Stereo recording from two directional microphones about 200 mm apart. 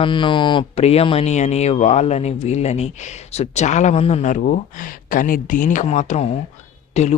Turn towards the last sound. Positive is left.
turn(degrees=30)  # may be behind; listen again after turning